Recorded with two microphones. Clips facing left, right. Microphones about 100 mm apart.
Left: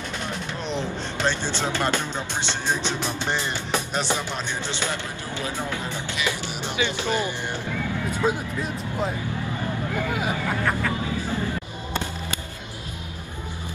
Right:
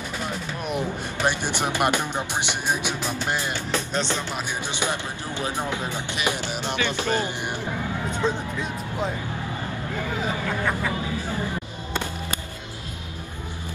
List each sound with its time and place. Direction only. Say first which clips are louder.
0.7 s speech: right 2 dB; 10° right (ahead or behind)
3.7 s speech: left 1 dB; 10° left (ahead or behind)
4.6 s speech: right 1 dB; 15° right (ahead or behind)
6.8 s speech: left 1 dB; 15° left (ahead or behind)
10.1 s speech: left 1 dB; 10° left (ahead or behind)